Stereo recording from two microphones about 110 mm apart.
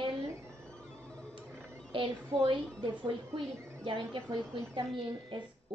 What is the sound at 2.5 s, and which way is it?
A woman's voice, 45° right (ahead or behind).